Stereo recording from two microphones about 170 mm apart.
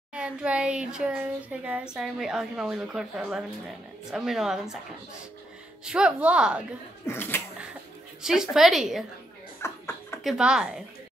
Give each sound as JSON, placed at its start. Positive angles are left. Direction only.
{"t": 0.1, "sound": "a woman's voice", "side_deg": -5}
{"t": 5.9, "sound": "speech", "side_deg": -5}
{"t": 7.1, "sound": "speech", "side_deg": 10}
{"t": 8.2, "sound": "a woman's voice", "side_deg": 0}
{"t": 9.6, "sound": "a sound", "side_deg": 15}
{"t": 10.2, "sound": "a woman's voice", "side_deg": -5}